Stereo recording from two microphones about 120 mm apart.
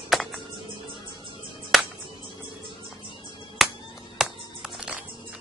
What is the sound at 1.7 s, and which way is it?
Finger snapping, centre (ahead or behind).